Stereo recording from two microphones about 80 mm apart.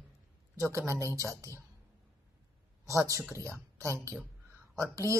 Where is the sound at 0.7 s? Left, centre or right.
Right.